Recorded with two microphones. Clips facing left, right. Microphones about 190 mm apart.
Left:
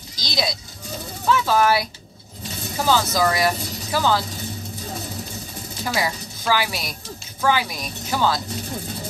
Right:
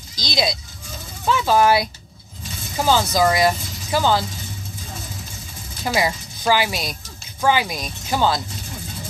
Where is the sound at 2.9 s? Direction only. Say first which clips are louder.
Right 2 dB; 20° right (ahead or behind).